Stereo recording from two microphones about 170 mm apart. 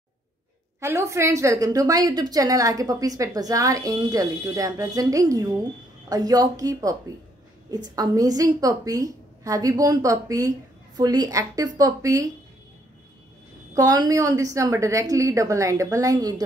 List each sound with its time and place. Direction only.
0.7 s a woman's voice: 15° right (ahead or behind)
13.7 s a woman's voice: 20° right (ahead or behind)